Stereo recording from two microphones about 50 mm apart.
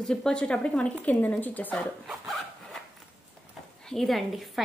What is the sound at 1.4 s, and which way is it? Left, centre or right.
Speech, left.